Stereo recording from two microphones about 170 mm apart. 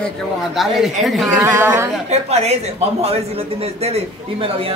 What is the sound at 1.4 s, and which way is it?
Speech, 15° right (ahead or behind).